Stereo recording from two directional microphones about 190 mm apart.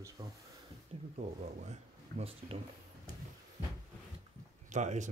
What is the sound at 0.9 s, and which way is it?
Speech, 30° right (ahead or behind).